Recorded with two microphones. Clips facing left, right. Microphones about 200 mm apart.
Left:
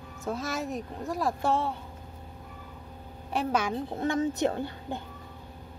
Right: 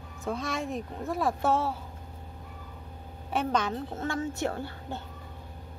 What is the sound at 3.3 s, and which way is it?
A woman's voice, 5° left (ahead or behind).